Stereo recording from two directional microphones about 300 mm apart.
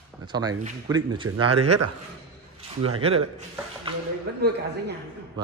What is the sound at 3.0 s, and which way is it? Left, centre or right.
Speech, centre.